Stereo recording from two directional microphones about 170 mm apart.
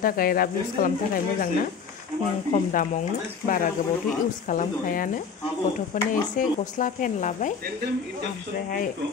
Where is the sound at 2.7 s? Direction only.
50° left (ahead or behind).